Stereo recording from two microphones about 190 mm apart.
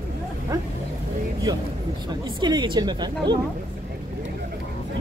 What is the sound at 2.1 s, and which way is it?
Speech, 25° right (ahead or behind).